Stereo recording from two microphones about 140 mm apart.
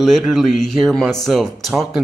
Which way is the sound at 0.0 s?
Centre (ahead or behind).